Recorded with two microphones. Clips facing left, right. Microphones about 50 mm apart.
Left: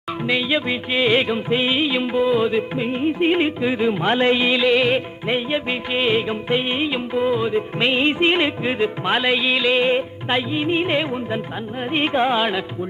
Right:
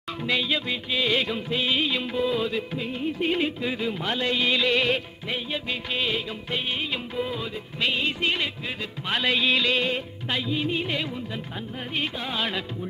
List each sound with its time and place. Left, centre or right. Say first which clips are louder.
0.3 s music: left 5 dB; left
4.5 s music: left 6 dB; centre
5.3 s music: left 8 dB; left
9.2 s music: left 1 dB; centre
9.8 s music: left 8 dB; left
12.4 s music: left 7 dB; centre